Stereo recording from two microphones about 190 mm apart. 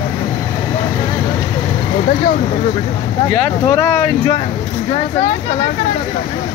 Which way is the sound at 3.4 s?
10° left (ahead or behind).